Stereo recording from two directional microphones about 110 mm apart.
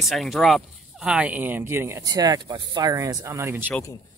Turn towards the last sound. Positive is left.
turn(degrees=-20)  # may be behind; listen again after turning